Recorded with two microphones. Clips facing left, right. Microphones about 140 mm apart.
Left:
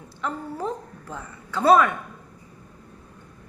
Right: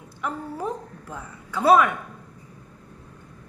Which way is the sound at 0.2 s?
10° right (ahead or behind).